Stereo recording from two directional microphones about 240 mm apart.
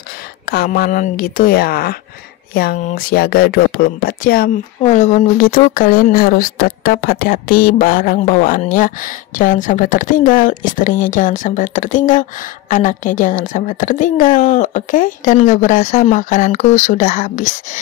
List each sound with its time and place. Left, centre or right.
0.5 s speech: left